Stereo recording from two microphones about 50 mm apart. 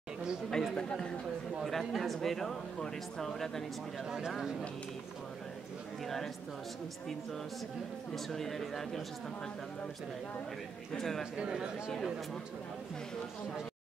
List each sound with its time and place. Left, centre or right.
0.5 s a man's voice: centre
1.6 s speech: centre
6.0 s speech: centre
8.3 s speech: centre
10.9 s a man's voice: centre
11.3 s speech: centre